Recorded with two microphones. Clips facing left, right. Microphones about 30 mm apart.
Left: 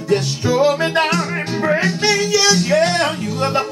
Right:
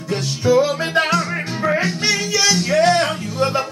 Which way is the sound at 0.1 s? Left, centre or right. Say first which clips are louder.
Right 1 dB; centre.